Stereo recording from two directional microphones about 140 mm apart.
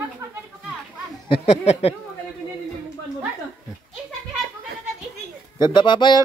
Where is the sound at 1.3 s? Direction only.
50° left (ahead or behind).